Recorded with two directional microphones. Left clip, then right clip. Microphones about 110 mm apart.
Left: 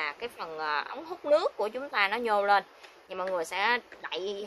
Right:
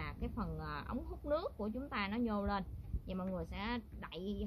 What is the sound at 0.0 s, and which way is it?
Speech, 15° left (ahead or behind).